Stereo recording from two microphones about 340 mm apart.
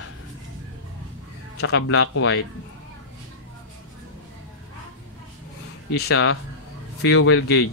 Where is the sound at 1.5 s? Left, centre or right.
Left.